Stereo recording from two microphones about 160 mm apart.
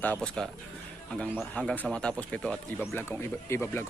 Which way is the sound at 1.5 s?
5° left (ahead or behind).